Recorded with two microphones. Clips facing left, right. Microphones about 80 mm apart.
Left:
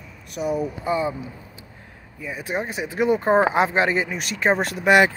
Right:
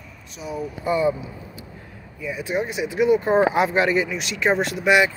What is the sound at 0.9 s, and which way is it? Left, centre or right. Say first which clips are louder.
Speech: right 4 dB; left.